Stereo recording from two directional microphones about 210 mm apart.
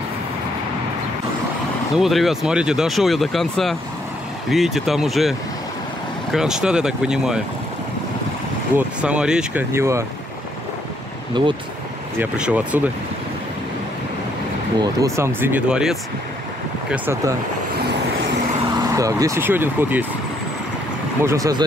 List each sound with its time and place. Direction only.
2.0 s speech: centre (ahead or behind)
6.3 s speech: centre (ahead or behind)
8.7 s speech: 5° right (ahead or behind)
11.4 s speech: 20° right (ahead or behind)
12.2 s speech: 5° right (ahead or behind)
14.8 s speech: 15° right (ahead or behind)
18.9 s speech: 15° right (ahead or behind)
21.2 s speech: 15° right (ahead or behind)